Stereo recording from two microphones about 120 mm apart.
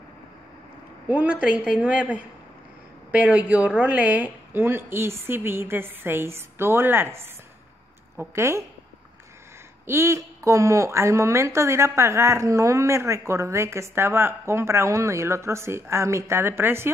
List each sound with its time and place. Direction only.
1.0 s a woman's voice: 10° right (ahead or behind)
8.2 s a woman's voice: 25° right (ahead or behind)
9.8 s a woman's voice: 25° right (ahead or behind)